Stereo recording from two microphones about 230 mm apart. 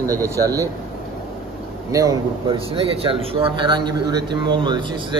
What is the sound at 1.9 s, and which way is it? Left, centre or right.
A man's voice, centre.